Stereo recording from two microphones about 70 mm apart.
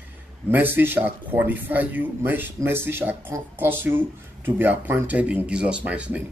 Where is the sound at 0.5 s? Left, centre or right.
Right.